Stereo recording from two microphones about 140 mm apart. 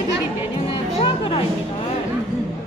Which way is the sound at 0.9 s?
40° left (ahead or behind).